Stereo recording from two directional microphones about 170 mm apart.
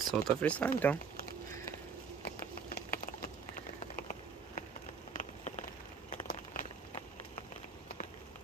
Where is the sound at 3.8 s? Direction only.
45° left (ahead or behind).